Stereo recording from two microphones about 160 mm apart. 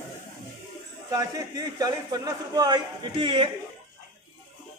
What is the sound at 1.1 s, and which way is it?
A man's voice, 20° right (ahead or behind).